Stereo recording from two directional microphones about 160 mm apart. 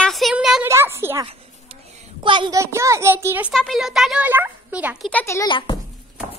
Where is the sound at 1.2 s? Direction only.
35° right (ahead or behind).